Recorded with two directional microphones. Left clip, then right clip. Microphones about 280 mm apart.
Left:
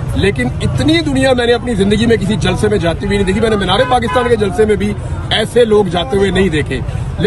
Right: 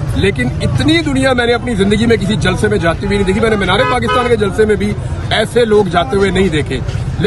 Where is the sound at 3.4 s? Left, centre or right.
Centre.